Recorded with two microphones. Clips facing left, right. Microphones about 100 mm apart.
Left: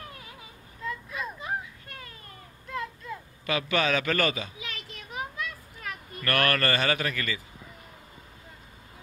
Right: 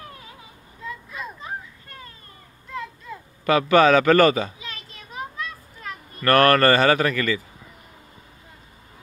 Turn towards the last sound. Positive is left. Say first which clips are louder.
# right 9 dB
turn(degrees=-45)  # may be behind; listen again after turning